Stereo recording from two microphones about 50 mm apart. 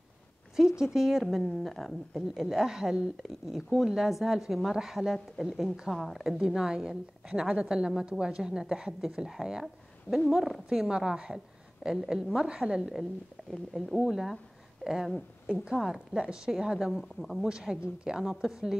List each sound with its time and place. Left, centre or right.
0.6 s a woman's voice: centre
2.1 s a woman's voice: centre
13.5 s a woman's voice: centre
14.8 s a sound: centre
15.4 s a woman's voice: centre